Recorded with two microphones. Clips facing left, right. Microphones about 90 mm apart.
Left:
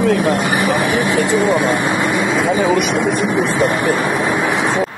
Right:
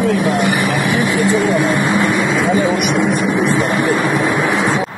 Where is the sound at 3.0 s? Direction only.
Centre (ahead or behind).